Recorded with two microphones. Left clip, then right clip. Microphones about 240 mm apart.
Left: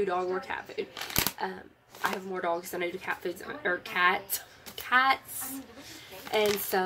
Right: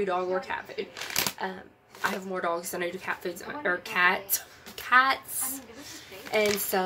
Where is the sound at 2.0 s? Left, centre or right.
Centre.